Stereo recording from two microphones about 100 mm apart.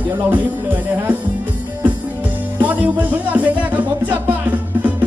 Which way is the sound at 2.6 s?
15° right (ahead or behind).